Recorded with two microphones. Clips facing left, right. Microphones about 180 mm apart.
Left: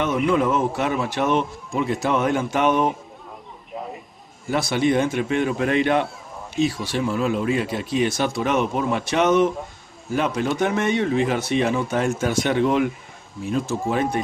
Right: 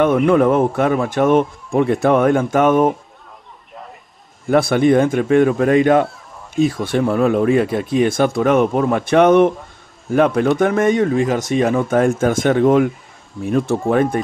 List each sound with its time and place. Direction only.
0.0 s speech: 55° right (ahead or behind)
4.5 s speech: 55° right (ahead or behind)
13.4 s speech: 60° right (ahead or behind)